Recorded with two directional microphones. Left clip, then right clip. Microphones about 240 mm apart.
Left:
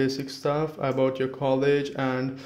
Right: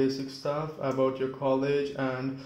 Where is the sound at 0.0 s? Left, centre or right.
Left.